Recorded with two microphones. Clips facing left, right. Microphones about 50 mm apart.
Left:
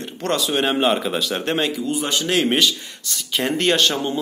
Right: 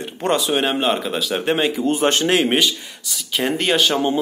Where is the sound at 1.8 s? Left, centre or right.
Right.